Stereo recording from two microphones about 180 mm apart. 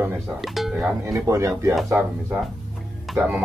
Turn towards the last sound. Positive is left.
turn(degrees=-5)  # may be behind; listen again after turning